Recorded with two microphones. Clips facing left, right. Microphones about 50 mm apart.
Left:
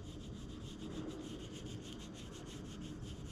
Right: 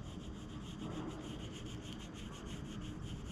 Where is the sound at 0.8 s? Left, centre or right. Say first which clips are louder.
Right 1 dB; right.